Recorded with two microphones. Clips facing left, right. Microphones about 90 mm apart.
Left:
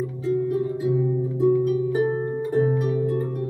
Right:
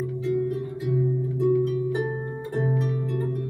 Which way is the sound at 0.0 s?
20° left (ahead or behind).